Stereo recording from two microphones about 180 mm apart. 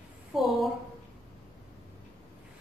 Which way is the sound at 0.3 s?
Centre (ahead or behind).